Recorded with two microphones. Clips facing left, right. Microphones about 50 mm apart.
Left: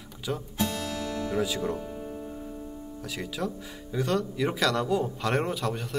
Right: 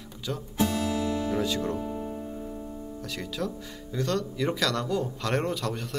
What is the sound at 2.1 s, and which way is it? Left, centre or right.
Music, centre.